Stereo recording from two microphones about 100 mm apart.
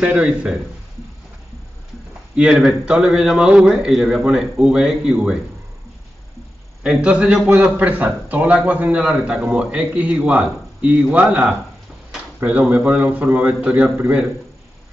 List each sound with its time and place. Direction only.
0.0 s a man's voice: 10° right (ahead or behind)
2.3 s a man's voice: 5° right (ahead or behind)
6.8 s a man's voice: 10° right (ahead or behind)